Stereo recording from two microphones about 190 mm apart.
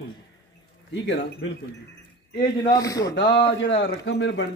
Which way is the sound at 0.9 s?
70° left (ahead or behind).